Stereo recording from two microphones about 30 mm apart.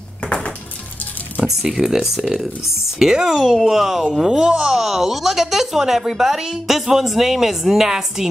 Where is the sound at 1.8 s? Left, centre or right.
Right.